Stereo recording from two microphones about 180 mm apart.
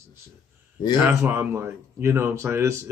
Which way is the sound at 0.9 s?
10° right (ahead or behind).